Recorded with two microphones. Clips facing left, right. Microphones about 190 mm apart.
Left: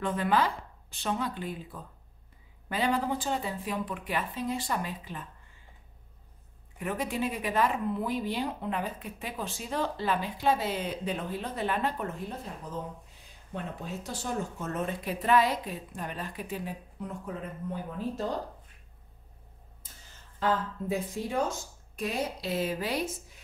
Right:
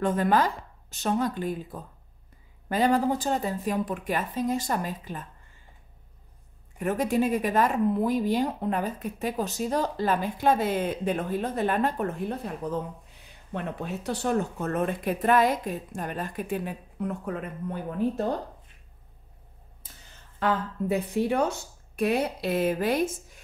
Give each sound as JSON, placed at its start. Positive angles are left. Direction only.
{"t": 0.0, "sound": "a woman's voice", "side_deg": -45}
{"t": 6.8, "sound": "a woman's voice", "side_deg": -45}
{"t": 13.3, "sound": "speech", "side_deg": -65}
{"t": 20.4, "sound": "speech", "side_deg": -65}